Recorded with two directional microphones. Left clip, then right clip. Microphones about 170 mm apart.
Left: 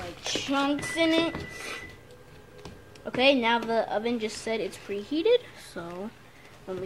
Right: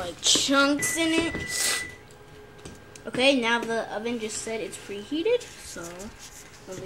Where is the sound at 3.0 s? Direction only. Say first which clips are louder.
Even; 25° left (ahead or behind).